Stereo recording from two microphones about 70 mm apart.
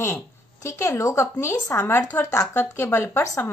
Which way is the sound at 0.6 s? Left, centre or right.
Left.